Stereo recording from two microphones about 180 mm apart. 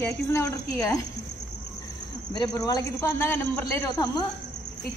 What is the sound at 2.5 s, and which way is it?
Speech, 15° left (ahead or behind).